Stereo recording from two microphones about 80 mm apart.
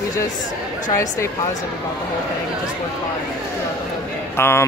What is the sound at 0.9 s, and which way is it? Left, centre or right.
Speech, left.